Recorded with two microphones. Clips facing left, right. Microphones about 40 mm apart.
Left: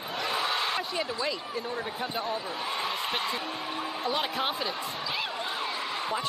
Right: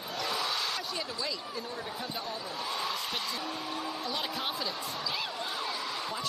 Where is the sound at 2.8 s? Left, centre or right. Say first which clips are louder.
Left 4 dB; left.